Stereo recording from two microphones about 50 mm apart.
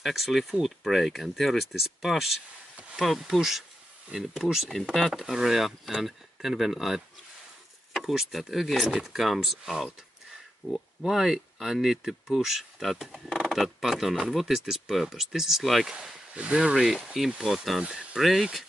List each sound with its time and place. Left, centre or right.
0.0 s speech: centre
10.6 s speech: left
11.1 s speech: centre
17.8 s speech: right
18.1 s speech: centre